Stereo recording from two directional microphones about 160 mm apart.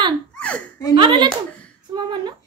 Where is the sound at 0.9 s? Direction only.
30° right (ahead or behind).